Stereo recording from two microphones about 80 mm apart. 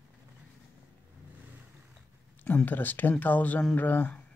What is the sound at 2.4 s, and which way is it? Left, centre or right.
Speech, left.